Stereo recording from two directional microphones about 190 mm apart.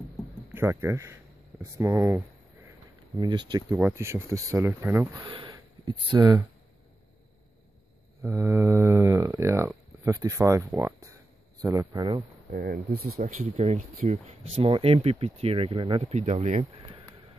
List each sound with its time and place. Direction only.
0.6 s speech: 10° right (ahead or behind)
3.7 s speech: 10° right (ahead or behind)
5.2 s speech: 25° right (ahead or behind)
8.2 s speech: 15° right (ahead or behind)
12.4 s speech: 50° right (ahead or behind)
13.2 s speech: 35° right (ahead or behind)